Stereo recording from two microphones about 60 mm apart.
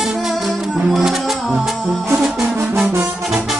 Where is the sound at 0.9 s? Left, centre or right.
Centre.